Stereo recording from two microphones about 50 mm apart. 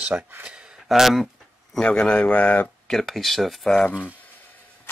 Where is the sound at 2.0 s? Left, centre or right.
Left.